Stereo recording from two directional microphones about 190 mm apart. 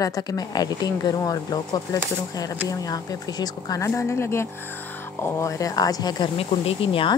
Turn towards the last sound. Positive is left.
turn(degrees=25)  # may be behind; listen again after turning